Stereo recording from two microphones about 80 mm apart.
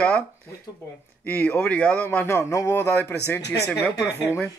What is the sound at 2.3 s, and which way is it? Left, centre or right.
Speech, left.